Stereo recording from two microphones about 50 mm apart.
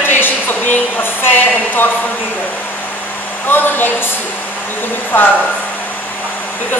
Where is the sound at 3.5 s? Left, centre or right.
Left.